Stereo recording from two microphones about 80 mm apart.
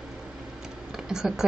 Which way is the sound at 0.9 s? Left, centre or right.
Centre.